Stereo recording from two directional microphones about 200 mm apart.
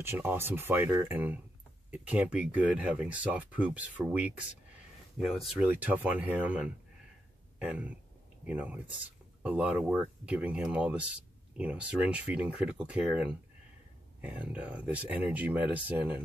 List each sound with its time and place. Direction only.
0.0 s speech: 10° right (ahead or behind)
7.5 s a sound: 5° right (ahead or behind)
8.5 s speech: 5° right (ahead or behind)